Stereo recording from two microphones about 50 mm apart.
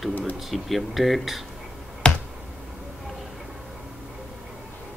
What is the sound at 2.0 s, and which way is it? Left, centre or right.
Finger snapping, centre.